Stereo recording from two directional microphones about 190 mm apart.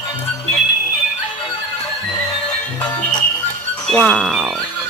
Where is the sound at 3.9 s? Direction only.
5° left (ahead or behind).